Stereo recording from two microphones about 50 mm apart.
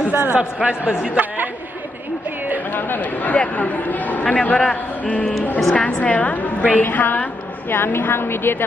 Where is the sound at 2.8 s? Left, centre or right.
Left.